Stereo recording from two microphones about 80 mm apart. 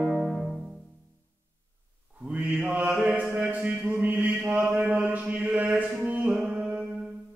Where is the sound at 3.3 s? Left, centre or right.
Right.